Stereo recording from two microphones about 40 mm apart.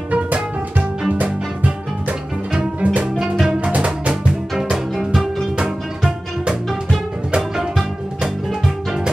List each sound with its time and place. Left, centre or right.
0.1 s music: right
5.1 s music: centre